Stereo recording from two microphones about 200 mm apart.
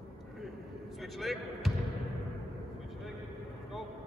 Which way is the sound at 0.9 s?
Centre (ahead or behind).